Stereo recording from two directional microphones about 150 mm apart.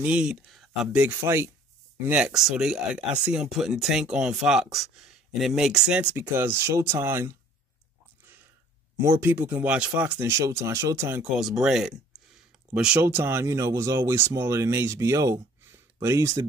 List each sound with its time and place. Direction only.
0.0 s speech: 5° right (ahead or behind)
1.0 s speech: 15° right (ahead or behind)
8.9 s speech: 15° right (ahead or behind)
11.2 s speech: 5° right (ahead or behind)
12.1 s a sound: centre (ahead or behind)
12.7 s speech: 10° right (ahead or behind)